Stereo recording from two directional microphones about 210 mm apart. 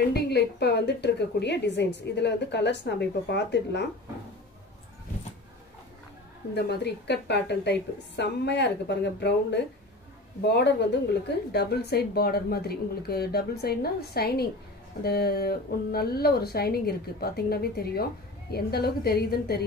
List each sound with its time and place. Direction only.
0.1 s a woman's voice: 50° left (ahead or behind)
6.5 s a woman's voice: 50° left (ahead or behind)